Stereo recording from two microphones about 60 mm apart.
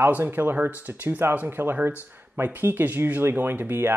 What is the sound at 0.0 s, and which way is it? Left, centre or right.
Speech, right.